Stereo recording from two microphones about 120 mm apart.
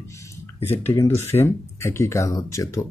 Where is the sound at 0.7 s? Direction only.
20° left (ahead or behind).